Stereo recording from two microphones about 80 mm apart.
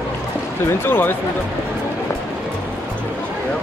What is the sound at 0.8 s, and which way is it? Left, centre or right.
Speech, left.